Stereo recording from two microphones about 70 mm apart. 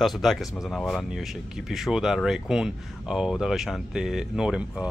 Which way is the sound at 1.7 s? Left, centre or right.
Centre.